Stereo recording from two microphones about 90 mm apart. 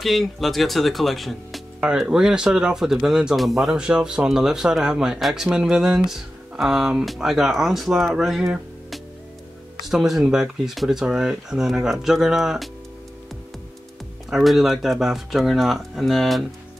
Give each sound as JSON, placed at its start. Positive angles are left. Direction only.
{"t": 0.0, "sound": "speech", "side_deg": 0}
{"t": 14.3, "sound": "speech", "side_deg": 0}